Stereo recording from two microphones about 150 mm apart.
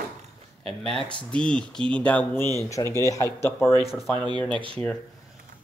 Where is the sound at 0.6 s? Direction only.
5° left (ahead or behind).